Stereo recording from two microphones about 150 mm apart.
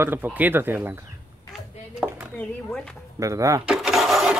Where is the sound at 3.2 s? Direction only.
20° right (ahead or behind).